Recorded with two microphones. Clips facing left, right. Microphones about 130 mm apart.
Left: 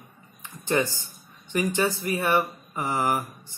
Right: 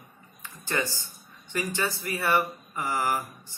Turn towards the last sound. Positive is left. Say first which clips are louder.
# left 2 dB
turn(degrees=20)  # may be behind; listen again after turning